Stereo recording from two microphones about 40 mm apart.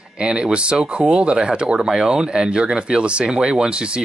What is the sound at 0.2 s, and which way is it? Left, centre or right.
Speech, right.